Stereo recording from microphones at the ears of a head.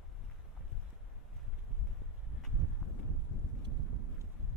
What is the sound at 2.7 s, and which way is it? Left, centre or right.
Wind noise, left.